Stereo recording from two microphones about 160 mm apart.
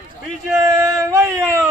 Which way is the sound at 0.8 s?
20° right (ahead or behind).